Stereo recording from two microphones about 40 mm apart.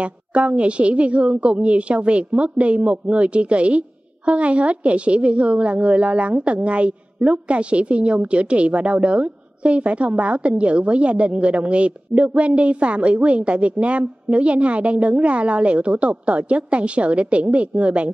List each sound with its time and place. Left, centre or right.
0.0 s a woman's voice: right